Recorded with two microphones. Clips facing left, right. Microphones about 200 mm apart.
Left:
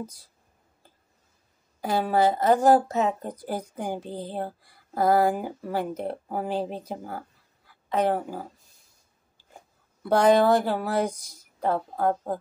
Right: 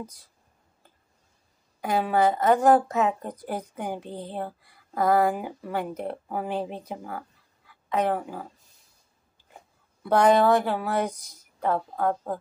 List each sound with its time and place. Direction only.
1.8 s speech: 30° left (ahead or behind)
10.0 s speech: 35° left (ahead or behind)